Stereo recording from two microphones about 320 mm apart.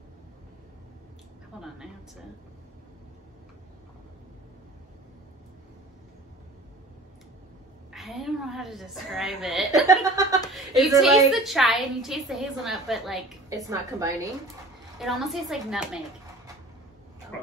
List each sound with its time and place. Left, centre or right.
1.5 s a woman's voice: centre
7.9 s a woman's voice: centre
10.5 s a sound: centre
10.9 s a woman's voice: centre